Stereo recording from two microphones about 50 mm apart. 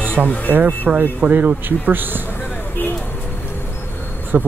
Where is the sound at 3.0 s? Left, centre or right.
Left.